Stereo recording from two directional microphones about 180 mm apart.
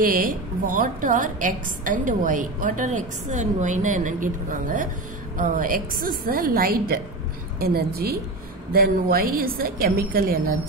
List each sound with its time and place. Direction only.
0.0 s a woman's voice: 50° right (ahead or behind)